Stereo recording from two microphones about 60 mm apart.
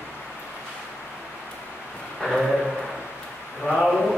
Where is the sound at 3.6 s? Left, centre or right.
Centre.